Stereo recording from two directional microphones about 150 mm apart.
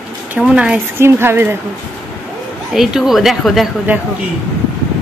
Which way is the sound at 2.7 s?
Centre (ahead or behind).